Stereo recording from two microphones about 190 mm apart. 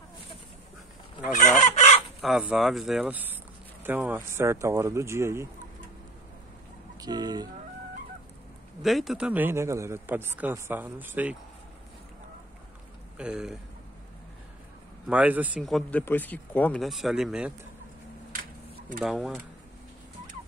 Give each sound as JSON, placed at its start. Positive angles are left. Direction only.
{"t": 1.3, "sound": "speech", "side_deg": 40}
{"t": 2.2, "sound": "a man's voice", "side_deg": 0}
{"t": 7.0, "sound": "speech", "side_deg": -20}
{"t": 8.8, "sound": "a man's voice", "side_deg": 0}
{"t": 13.2, "sound": "speech", "side_deg": -5}
{"t": 15.0, "sound": "speech", "side_deg": -5}
{"t": 18.3, "sound": "a sound", "side_deg": -50}
{"t": 18.9, "sound": "speech", "side_deg": 0}